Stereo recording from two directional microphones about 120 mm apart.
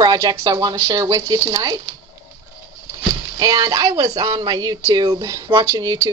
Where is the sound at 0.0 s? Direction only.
30° right (ahead or behind).